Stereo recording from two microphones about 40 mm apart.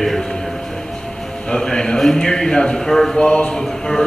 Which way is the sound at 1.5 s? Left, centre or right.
Centre.